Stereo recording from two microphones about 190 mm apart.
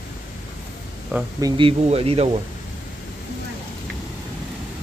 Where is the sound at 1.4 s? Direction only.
20° right (ahead or behind).